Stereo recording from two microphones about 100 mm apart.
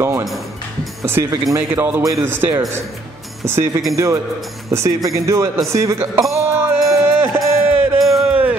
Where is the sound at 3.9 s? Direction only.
30° right (ahead or behind).